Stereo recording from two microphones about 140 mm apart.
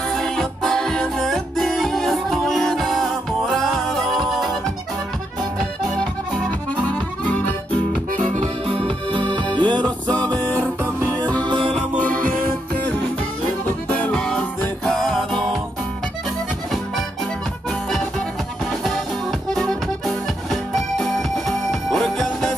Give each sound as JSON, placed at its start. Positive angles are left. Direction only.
{"t": 0.1, "sound": "music", "side_deg": 5}
{"t": 6.8, "sound": "accordion", "side_deg": 10}
{"t": 8.1, "sound": "music", "side_deg": -65}
{"t": 9.3, "sound": "music", "side_deg": -35}
{"t": 10.1, "sound": "music", "side_deg": 10}
{"t": 11.4, "sound": "music", "side_deg": -35}
{"t": 12.0, "sound": "music", "side_deg": 10}
{"t": 19.5, "sound": "accordion", "side_deg": 0}
{"t": 20.7, "sound": "music", "side_deg": 0}